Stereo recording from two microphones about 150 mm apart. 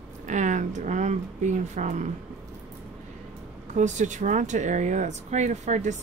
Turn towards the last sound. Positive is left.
turn(degrees=-50)  # may be behind; listen again after turning